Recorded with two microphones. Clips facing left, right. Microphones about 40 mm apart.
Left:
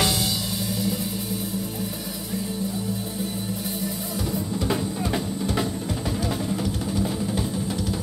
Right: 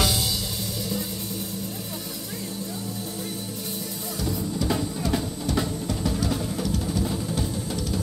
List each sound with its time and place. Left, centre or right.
0.0 s music: centre
4.6 s drum: centre
7.1 s music: centre